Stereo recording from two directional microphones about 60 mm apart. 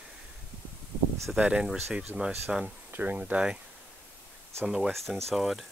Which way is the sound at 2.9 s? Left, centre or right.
Right.